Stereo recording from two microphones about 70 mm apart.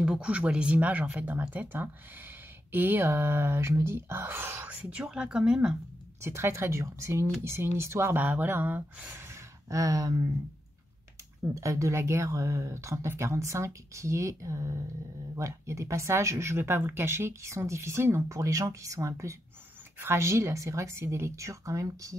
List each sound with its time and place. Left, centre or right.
0.0 s speech: centre; by 4.6 s right
4.6 s speech: centre
6.2 s speech: right
8.2 s speech: right
9.7 s speech: right
11.5 s speech: right